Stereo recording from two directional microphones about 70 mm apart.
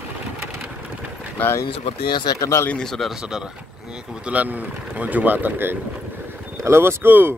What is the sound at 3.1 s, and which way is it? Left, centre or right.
Speech, centre.